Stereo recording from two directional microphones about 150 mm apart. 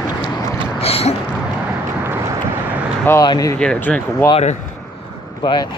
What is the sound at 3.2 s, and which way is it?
Speech, 25° left (ahead or behind).